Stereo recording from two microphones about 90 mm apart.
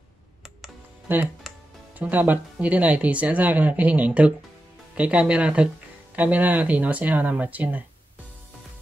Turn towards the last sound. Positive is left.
turn(degrees=-20)  # may be behind; listen again after turning